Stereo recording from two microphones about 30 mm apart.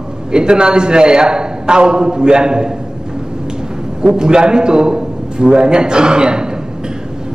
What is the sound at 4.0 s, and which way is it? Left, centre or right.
A man's voice, right.